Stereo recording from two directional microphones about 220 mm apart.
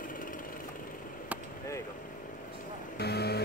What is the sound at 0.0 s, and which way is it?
Vehicle, 40° left (ahead or behind).